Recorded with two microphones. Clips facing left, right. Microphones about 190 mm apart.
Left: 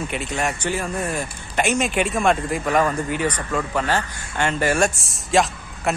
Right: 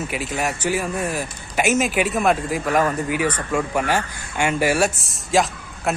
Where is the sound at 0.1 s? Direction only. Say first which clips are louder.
Even; 5° right (ahead or behind).